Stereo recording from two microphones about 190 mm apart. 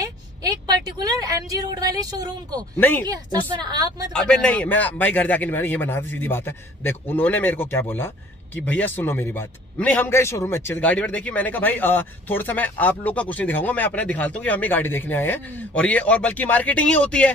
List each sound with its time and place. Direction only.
0.0 s a woman's voice: 20° right (ahead or behind)
2.8 s a man's voice: 10° left (ahead or behind)
3.1 s a woman's voice: 20° right (ahead or behind)
4.1 s a man's voice: 5° left (ahead or behind)